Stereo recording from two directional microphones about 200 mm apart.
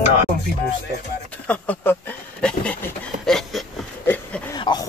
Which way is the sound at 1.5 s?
10° left (ahead or behind).